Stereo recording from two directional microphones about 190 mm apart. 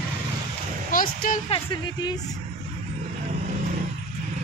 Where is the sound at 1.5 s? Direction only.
25° left (ahead or behind).